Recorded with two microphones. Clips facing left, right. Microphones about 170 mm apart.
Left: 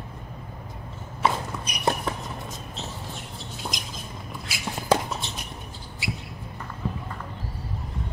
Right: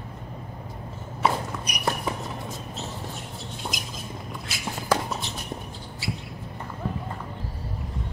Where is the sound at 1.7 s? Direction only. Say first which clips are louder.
Right 1 dB; 25° left (ahead or behind).